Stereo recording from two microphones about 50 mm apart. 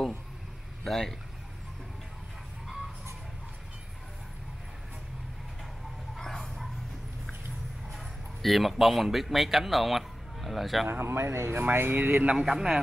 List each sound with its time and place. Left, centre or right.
0.8 s speech: centre
6.1 s a sound: centre
7.9 s speech: centre
10.9 s speech: right
12.4 s a man's voice: centre